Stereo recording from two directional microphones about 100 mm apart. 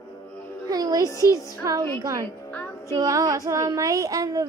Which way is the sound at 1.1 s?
35° left (ahead or behind).